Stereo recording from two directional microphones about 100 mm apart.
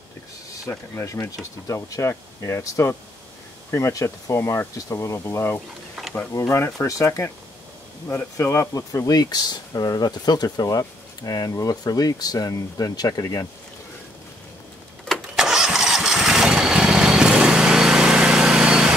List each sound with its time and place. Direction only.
0.7 s speech: 30° left (ahead or behind)
15.0 s engine starting: 5° right (ahead or behind)